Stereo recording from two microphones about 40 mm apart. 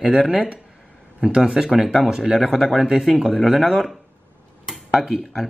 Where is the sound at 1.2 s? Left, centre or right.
Centre.